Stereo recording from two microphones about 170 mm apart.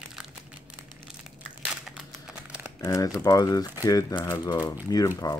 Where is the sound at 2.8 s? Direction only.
20° left (ahead or behind).